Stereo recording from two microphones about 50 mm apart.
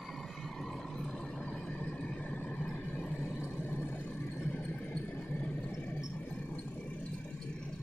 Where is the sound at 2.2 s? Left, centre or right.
Left.